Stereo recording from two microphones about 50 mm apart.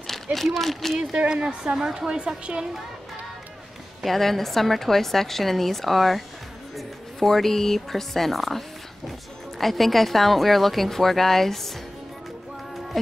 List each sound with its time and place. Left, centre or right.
0.0 s a sound: centre
0.6 s a woman's voice: centre
0.9 s a woman's voice: centre
4.0 s a woman's voice: centre
12.9 s a woman's voice: centre